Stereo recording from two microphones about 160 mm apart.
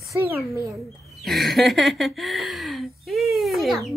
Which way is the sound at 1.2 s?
Centre (ahead or behind).